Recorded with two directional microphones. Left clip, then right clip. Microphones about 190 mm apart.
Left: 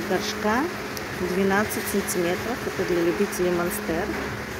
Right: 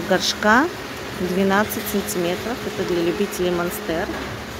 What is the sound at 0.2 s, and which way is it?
Speech, 40° right (ahead or behind).